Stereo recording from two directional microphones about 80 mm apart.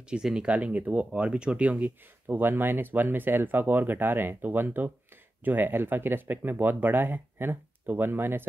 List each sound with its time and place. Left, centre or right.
0.1 s speech: centre; by 8.5 s right